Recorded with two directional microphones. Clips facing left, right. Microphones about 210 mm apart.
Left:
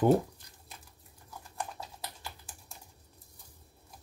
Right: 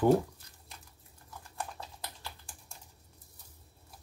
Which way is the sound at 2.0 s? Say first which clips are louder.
Left 1 dB; 5° left (ahead or behind).